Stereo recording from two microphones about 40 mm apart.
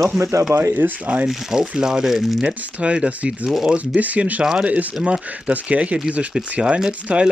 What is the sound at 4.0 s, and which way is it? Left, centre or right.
Speech, right.